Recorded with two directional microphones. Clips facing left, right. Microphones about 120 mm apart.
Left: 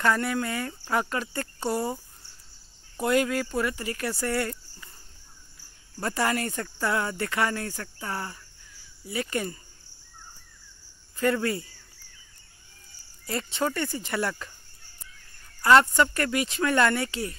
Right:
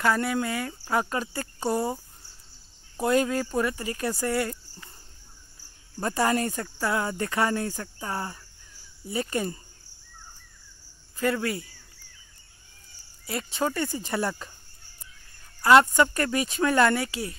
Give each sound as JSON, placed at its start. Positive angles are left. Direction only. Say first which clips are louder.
{"t": 0.2, "sound": "speech", "louder": "right 1 dB", "side_deg": -20}
{"t": 1.7, "sound": "a sound", "louder": "right 2 dB", "side_deg": -25}
{"t": 3.0, "sound": "speech", "louder": "right 1 dB", "side_deg": -25}
{"t": 5.9, "sound": "speech", "louder": "right 2 dB", "side_deg": -15}
{"t": 11.3, "sound": "speech", "louder": "left 1 dB", "side_deg": 0}
{"t": 13.2, "sound": "speech", "louder": "even", "side_deg": -5}
{"t": 15.6, "sound": "speech", "louder": "right 1 dB", "side_deg": -20}